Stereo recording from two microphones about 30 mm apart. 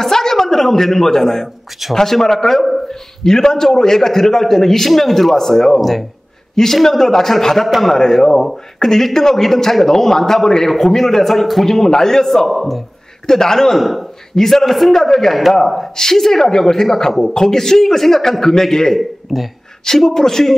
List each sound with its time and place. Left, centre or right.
0.0 s a sound: centre
0.6 s a man's voice: centre
5.8 s a man's voice: centre
6.5 s a man's voice: centre
7.6 s a man's voice: centre
8.0 s a man's voice: centre
12.4 s a man's voice: centre
13.3 s a man's voice: centre
13.7 s a man's voice: centre
14.3 s a man's voice: centre
19.3 s a man's voice: centre
20.1 s a man's voice: centre